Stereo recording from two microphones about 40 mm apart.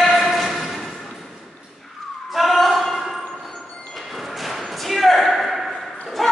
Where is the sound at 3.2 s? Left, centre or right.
Centre.